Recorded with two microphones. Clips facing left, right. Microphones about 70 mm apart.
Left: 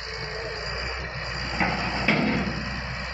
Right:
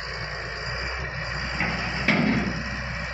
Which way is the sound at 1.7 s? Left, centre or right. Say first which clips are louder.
Right 2 dB; centre.